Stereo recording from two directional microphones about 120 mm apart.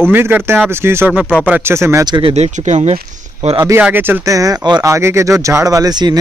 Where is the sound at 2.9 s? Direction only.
55° right (ahead or behind).